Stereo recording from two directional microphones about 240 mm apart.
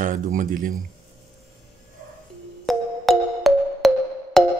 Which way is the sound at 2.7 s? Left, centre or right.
Centre.